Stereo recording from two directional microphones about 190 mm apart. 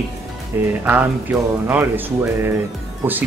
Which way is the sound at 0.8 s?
10° right (ahead or behind).